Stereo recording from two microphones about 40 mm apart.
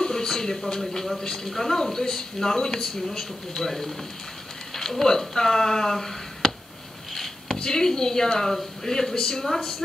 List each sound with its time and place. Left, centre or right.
0.0 s speech: centre
7.5 s speech: centre